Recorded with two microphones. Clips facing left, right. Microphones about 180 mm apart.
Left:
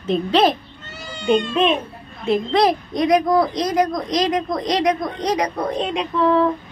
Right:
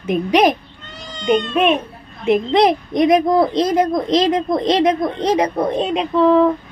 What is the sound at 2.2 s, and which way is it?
A woman's voice, 20° right (ahead or behind).